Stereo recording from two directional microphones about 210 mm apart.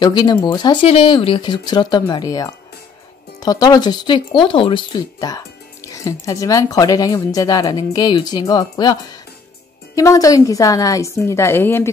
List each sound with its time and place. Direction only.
0.0 s speech: 20° left (ahead or behind)